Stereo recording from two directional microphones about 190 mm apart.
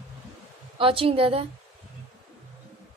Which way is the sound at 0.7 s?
30° right (ahead or behind).